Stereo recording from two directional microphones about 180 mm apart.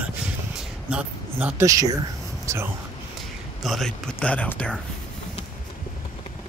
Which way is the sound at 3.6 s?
Centre (ahead or behind).